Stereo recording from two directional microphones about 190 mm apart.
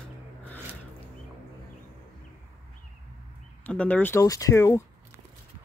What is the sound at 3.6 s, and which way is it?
Speech, 5° left (ahead or behind).